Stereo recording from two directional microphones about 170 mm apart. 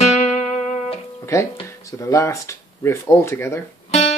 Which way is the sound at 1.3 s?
15° left (ahead or behind).